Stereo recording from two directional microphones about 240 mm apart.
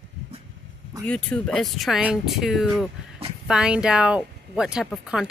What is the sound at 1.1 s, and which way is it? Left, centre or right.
Speech, centre.